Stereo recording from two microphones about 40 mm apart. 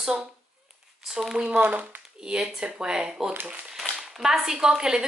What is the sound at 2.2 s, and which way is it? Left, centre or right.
A woman's voice, right.